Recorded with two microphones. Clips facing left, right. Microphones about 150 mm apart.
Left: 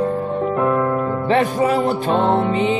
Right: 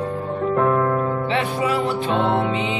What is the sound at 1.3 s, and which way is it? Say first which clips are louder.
Music: left 8 dB; 45° left (ahead or behind).